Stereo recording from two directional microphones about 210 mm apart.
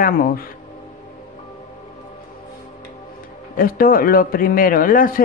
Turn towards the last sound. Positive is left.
turn(degrees=40)  # may be behind; listen again after turning